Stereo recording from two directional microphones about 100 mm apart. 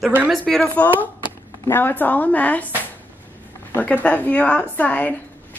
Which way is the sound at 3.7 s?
15° left (ahead or behind).